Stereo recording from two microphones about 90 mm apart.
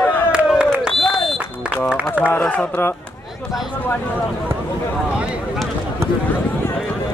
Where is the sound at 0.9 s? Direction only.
Centre (ahead or behind).